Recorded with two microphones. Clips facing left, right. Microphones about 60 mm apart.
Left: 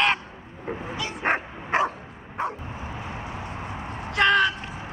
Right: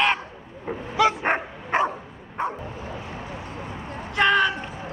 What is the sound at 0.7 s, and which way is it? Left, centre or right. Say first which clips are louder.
Bow-wow: right 1 dB; centre.